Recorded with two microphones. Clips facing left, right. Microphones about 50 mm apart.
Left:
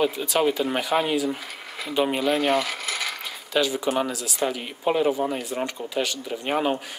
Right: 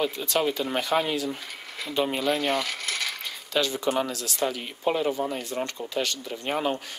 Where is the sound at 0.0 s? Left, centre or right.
Centre.